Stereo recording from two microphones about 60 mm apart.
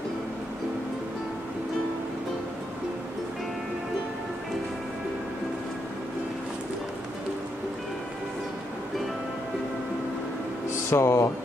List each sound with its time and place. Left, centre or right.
10.9 s speech: left